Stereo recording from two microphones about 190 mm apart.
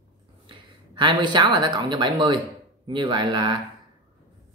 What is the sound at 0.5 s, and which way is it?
Speech, 25° right (ahead or behind).